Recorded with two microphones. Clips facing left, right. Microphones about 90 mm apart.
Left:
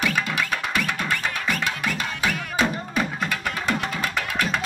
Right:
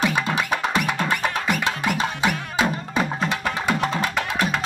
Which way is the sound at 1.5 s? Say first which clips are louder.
Right 2 dB; 20° right (ahead or behind).